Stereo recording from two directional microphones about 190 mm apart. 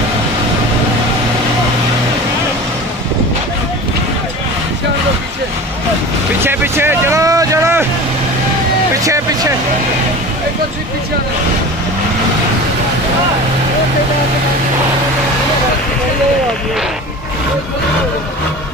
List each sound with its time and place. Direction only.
6.4 s speech: 10° right (ahead or behind)
9.0 s speech: 15° right (ahead or behind)